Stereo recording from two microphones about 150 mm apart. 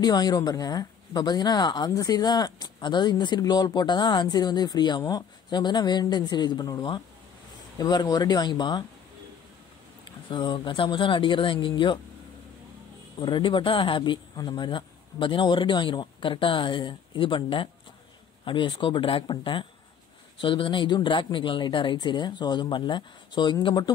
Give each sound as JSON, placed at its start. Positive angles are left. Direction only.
{"t": 0.0, "sound": "speech", "side_deg": 25}
{"t": 10.0, "sound": "speech", "side_deg": 30}
{"t": 13.2, "sound": "speech", "side_deg": 30}